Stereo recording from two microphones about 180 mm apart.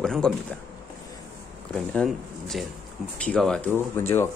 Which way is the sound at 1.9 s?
Centre (ahead or behind).